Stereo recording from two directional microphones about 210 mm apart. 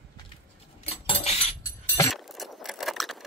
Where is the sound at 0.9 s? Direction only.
30° left (ahead or behind).